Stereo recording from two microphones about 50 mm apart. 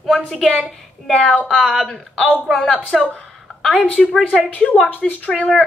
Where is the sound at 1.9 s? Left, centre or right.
Centre.